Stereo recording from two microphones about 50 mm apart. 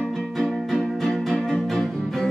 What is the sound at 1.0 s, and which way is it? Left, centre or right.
Music, centre.